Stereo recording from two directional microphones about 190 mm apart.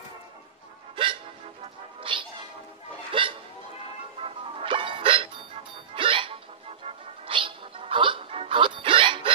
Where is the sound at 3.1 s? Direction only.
25° right (ahead or behind).